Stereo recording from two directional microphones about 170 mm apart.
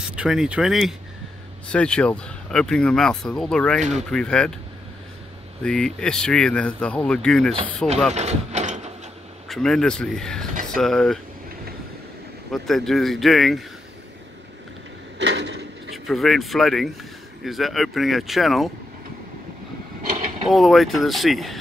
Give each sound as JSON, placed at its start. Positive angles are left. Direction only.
{"t": 0.1, "sound": "speech", "side_deg": -5}
{"t": 5.6, "sound": "speech", "side_deg": 5}
{"t": 8.1, "sound": "mechanisms", "side_deg": -40}
{"t": 9.5, "sound": "speech", "side_deg": 5}
{"t": 10.5, "sound": "a sound", "side_deg": -50}
{"t": 10.8, "sound": "speech", "side_deg": 5}
{"t": 12.6, "sound": "speech", "side_deg": 0}
{"t": 15.1, "sound": "a sound", "side_deg": -90}
{"t": 16.1, "sound": "speech", "side_deg": 0}
{"t": 20.4, "sound": "speech", "side_deg": 0}